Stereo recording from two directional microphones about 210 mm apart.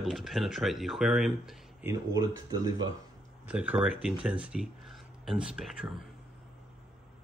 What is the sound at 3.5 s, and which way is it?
Speech, 5° right (ahead or behind).